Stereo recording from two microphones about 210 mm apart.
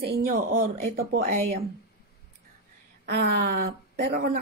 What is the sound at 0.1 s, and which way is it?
Speech, 45° right (ahead or behind).